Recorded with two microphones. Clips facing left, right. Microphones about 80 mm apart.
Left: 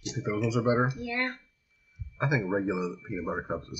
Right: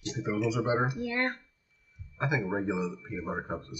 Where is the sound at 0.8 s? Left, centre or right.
Right.